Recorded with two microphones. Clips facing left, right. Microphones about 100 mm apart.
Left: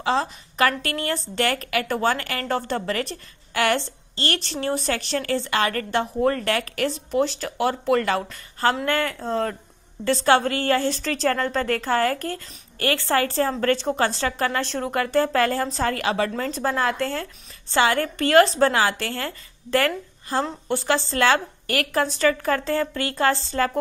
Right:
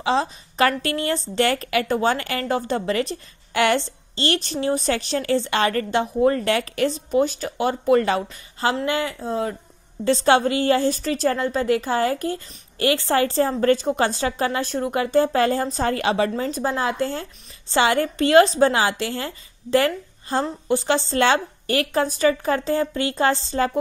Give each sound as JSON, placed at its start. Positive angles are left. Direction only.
{"t": 0.0, "sound": "a woman's voice", "side_deg": -20}
{"t": 10.0, "sound": "a woman's voice", "side_deg": -20}